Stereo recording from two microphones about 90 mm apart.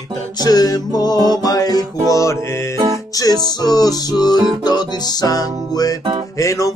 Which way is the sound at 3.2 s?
45° left (ahead or behind).